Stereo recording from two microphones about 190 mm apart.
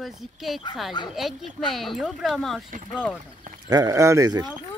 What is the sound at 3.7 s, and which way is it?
Speech, 20° right (ahead or behind).